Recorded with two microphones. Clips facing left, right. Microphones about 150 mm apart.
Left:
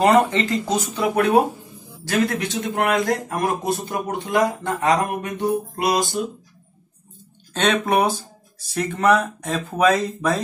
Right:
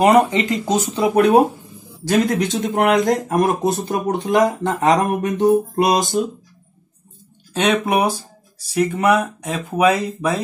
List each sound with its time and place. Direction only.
0.0 s speech: 15° right (ahead or behind)
7.5 s speech: 10° right (ahead or behind)